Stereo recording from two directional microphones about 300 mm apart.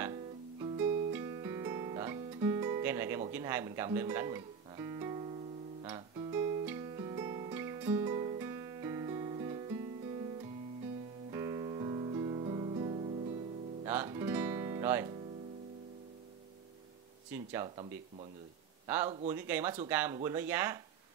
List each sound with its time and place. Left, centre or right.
0.0 s music: centre
11.3 s music: centre
13.8 s guitar: centre
17.3 s a sound: centre
18.9 s speech: centre